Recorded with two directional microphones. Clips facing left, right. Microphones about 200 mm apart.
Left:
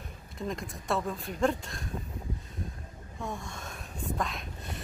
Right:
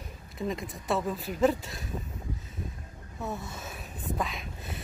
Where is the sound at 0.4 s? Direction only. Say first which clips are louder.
Right 3 dB; centre (ahead or behind).